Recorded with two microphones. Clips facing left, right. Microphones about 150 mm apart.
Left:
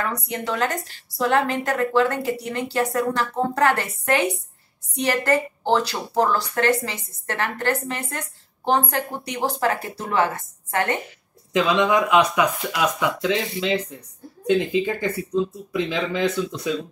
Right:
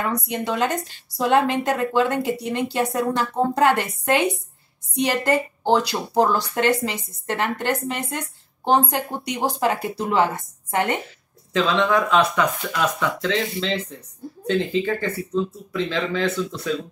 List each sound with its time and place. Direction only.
0.0 s a woman's voice: 15° right (ahead or behind)
11.5 s speech: 15° left (ahead or behind)